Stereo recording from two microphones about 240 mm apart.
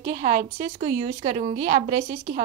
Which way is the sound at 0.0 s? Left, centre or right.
Right.